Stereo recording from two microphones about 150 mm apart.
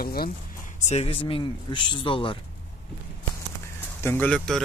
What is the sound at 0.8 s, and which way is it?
Speech, 45° left (ahead or behind).